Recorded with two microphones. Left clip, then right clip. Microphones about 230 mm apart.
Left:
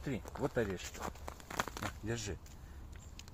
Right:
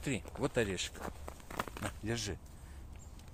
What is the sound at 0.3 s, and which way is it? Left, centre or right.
Speech, centre.